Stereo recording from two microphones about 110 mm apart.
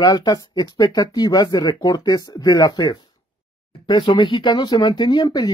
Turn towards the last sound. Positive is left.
turn(degrees=40)  # may be behind; listen again after turning